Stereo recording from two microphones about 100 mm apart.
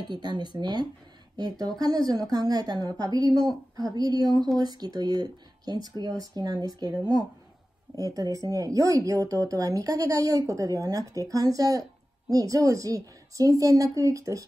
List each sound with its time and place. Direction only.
0.1 s speech: 45° right (ahead or behind)